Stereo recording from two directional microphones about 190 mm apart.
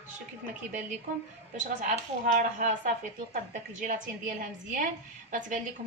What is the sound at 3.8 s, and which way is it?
A woman's voice, 45° right (ahead or behind).